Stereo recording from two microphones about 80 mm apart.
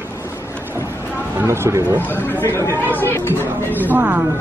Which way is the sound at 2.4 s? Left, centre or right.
Left.